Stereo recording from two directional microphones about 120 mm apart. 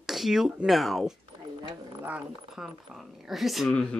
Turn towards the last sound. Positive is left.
turn(degrees=0)  # may be behind; listen again after turning